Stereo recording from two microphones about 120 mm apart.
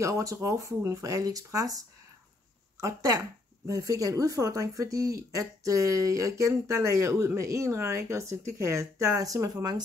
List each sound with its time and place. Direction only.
0.0 s speech: 25° right (ahead or behind)